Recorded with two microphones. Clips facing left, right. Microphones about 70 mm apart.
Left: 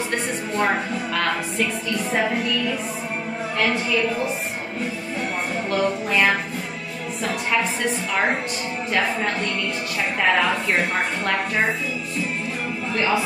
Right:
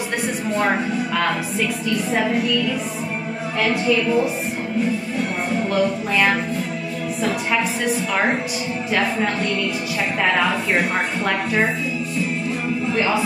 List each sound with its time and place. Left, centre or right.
5.7 s speech: centre